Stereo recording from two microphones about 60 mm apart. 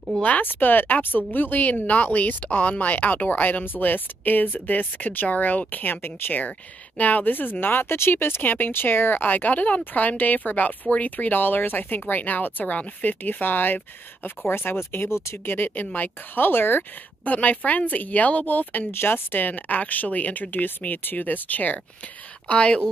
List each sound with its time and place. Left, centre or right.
0.2 s a woman's voice: left
7.0 s a woman's voice: left